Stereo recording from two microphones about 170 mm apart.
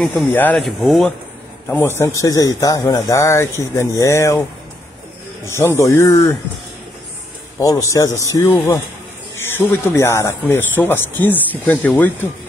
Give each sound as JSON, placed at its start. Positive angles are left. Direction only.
{"t": 0.0, "sound": "speech", "side_deg": 10}
{"t": 1.7, "sound": "speech", "side_deg": 15}
{"t": 7.5, "sound": "speech", "side_deg": 15}